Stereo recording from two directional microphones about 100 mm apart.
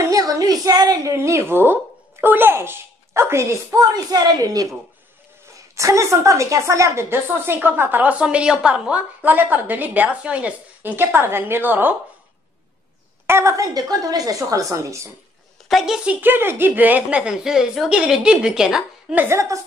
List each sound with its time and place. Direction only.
0.0 s a woman's voice: 35° right (ahead or behind)
5.8 s a woman's voice: 30° right (ahead or behind)
13.3 s a woman's voice: 30° right (ahead or behind)
15.7 s a woman's voice: 5° right (ahead or behind)
16.2 s a woman's voice: 20° right (ahead or behind); by 19.1 s 5° right (ahead or behind)
19.1 s a woman's voice: 25° right (ahead or behind)